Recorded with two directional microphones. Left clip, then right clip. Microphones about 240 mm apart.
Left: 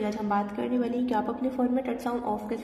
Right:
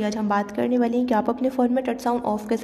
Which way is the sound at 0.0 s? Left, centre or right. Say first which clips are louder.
Right 4 dB; right.